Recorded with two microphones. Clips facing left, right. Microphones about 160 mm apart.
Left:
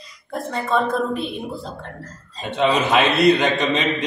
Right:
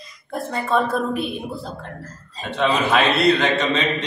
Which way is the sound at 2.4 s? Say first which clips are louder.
Left 1 dB; 15° left (ahead or behind).